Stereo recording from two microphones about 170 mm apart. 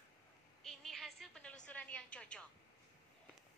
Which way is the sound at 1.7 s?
10° left (ahead or behind).